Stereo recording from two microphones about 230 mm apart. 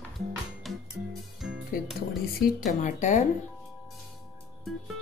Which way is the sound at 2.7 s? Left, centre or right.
Left.